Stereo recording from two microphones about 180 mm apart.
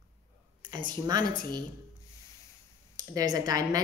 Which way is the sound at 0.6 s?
25° right (ahead or behind).